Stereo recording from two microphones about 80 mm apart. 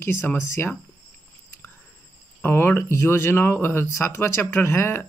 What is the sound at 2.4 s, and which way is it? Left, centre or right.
Speech, left.